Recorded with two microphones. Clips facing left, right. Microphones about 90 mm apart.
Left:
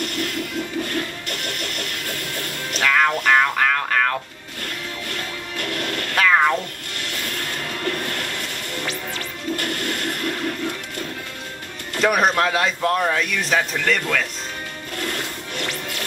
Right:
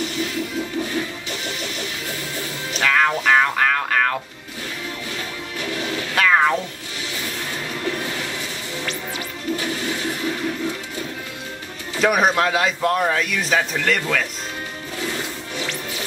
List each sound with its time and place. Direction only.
0.0 s music: 65° left (ahead or behind)
0.8 s smash: 5° right (ahead or behind)
1.5 s music: 60° left (ahead or behind)
2.0 s music: 10° right (ahead or behind)
5.8 s a sound: 5° right (ahead or behind)
7.3 s music: 5° right (ahead or behind)
9.6 s music: 60° left (ahead or behind)
9.8 s a sound: 5° right (ahead or behind)
11.9 s a man's voice: centre (ahead or behind)
15.0 s music: 5° right (ahead or behind)